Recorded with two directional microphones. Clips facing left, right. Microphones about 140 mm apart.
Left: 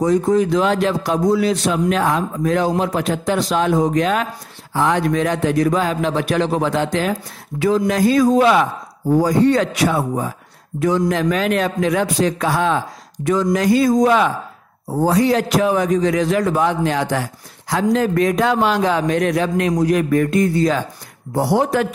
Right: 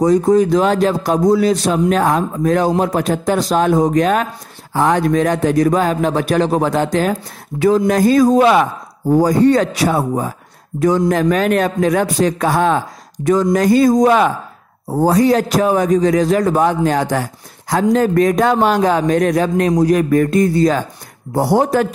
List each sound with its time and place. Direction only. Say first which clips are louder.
0.0 s a man's voice: right 4 dB; 40° right (ahead or behind)